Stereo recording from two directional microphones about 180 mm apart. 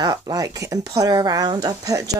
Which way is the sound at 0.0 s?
20° right (ahead or behind).